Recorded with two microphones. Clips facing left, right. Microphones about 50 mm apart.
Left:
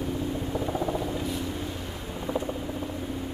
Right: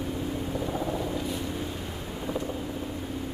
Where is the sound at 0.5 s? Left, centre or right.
Centre.